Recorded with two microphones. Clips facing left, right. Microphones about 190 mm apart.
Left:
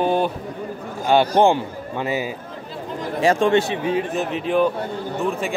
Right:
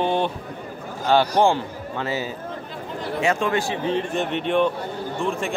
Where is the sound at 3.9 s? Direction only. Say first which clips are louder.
Left 1 dB; 5° left (ahead or behind).